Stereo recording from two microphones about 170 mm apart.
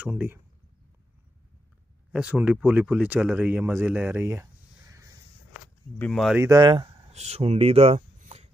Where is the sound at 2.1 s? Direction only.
5° right (ahead or behind).